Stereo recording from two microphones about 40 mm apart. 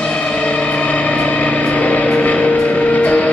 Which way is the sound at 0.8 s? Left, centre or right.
Left.